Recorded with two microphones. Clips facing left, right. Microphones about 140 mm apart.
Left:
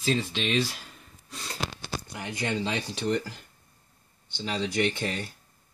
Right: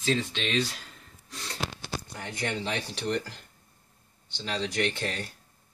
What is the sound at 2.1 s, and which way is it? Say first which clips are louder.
Speech: left 3 dB; 15° left (ahead or behind).